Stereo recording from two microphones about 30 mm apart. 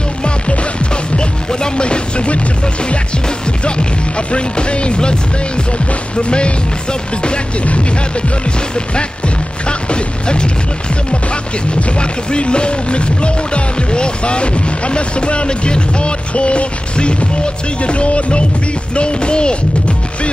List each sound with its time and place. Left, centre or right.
0.2 s music: left
3.3 s music: left
6.1 s music: left
7.6 s speech: left
9.7 s music: left
12.0 s music: left